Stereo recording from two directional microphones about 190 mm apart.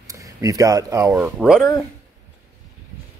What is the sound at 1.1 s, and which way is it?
Speech, 5° right (ahead or behind).